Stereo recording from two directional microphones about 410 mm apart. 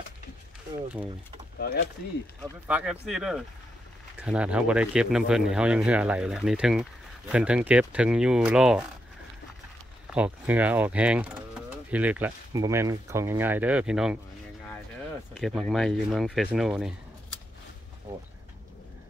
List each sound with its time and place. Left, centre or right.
1.6 s speech: left
2.4 s speech: centre
10.0 s speech: centre
15.3 s speech: centre